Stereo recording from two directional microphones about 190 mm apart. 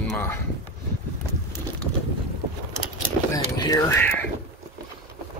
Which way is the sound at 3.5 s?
20° left (ahead or behind).